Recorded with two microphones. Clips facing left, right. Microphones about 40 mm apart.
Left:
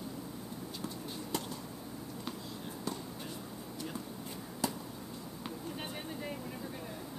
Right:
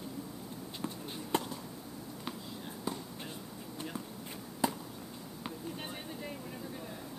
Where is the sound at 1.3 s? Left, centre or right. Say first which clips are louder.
Right 6 dB; right.